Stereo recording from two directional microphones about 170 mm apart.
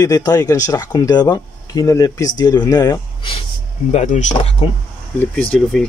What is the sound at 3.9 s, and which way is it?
Speech, 45° left (ahead or behind).